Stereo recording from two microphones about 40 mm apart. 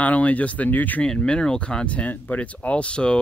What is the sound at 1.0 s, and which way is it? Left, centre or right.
Speech, left.